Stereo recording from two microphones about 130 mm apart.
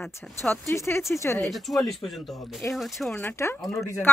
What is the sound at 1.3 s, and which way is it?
Speech, centre (ahead or behind).